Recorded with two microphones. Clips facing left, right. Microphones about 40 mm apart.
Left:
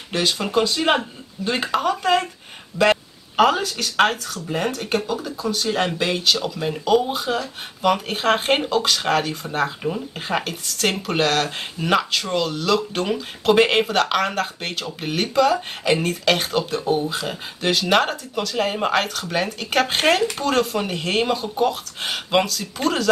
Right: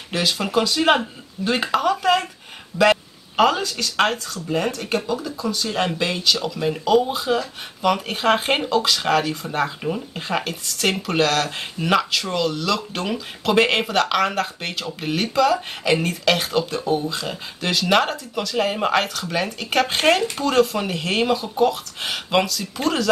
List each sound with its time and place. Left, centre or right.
0.1 s speech: centre
2.7 s speech: right
3.3 s speech: centre
5.0 s speech: left
5.8 s speech: centre
16.7 s speech: left; by 23.0 s centre